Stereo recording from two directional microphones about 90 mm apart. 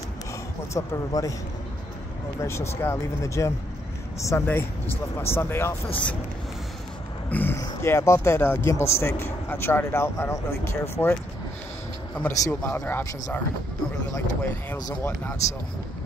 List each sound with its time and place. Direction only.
0.7 s speech: 40° left (ahead or behind)
2.4 s speech: 30° left (ahead or behind)
4.3 s speech: 25° left (ahead or behind)
7.2 s speech: 20° left (ahead or behind)
7.8 s speech: 30° left (ahead or behind)
12.3 s speech: 30° left (ahead or behind)